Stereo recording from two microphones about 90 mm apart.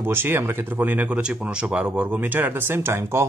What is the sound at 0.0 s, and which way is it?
Speech, 25° right (ahead or behind).